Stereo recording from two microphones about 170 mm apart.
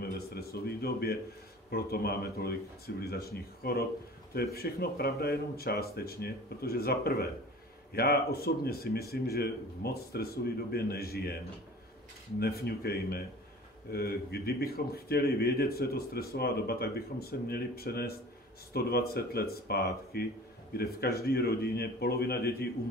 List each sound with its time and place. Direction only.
0.0 s a man's voice: 65° left (ahead or behind)